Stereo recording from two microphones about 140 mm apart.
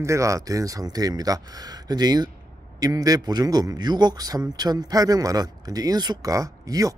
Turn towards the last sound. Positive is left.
turn(degrees=-25)  # may be behind; listen again after turning